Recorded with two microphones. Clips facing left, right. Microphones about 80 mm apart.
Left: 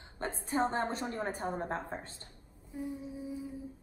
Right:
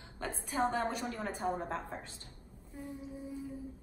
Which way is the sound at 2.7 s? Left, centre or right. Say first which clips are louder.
Left 6 dB; centre.